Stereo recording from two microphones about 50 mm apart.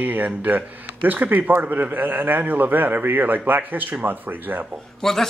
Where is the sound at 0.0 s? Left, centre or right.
Right.